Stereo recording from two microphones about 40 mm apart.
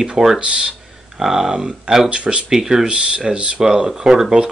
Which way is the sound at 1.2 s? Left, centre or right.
Centre.